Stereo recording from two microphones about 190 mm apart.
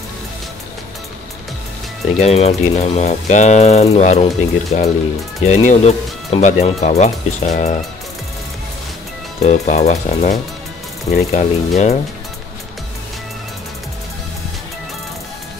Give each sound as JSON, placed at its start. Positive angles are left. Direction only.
{"t": 2.1, "sound": "speech", "side_deg": 35}
{"t": 9.4, "sound": "speech", "side_deg": 35}